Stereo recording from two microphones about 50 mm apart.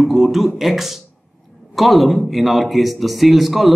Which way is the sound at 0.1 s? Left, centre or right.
Centre.